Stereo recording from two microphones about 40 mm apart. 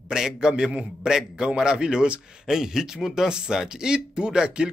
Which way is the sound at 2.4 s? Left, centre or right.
Centre.